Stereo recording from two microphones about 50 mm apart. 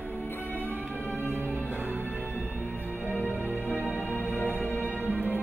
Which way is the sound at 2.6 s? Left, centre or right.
Left.